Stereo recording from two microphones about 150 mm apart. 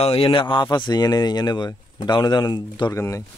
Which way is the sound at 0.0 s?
40° left (ahead or behind).